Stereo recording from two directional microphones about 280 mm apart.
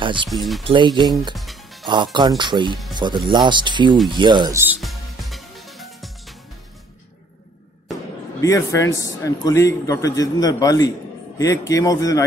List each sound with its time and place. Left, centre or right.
0.0 s speech: centre
0.3 s speech: centre
0.7 s speech: centre
1.3 s music: centre
2.1 s speech: centre
4.1 s music: centre
8.4 s a man's voice: centre